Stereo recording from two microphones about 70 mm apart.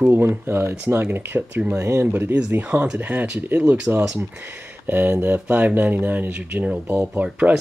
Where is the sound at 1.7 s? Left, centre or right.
Right.